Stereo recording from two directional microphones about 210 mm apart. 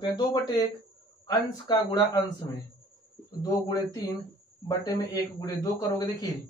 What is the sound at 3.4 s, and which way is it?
Speech, 15° left (ahead or behind).